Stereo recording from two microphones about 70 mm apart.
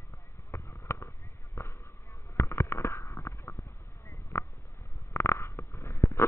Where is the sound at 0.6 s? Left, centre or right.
Left.